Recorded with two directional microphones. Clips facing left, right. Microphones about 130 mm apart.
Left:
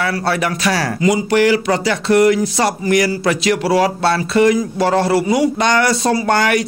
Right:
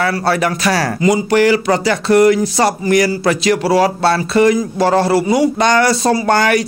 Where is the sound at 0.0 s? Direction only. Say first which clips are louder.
Right 3 dB; 40° right (ahead or behind).